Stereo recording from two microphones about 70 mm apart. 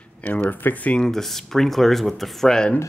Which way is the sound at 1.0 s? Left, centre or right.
Centre.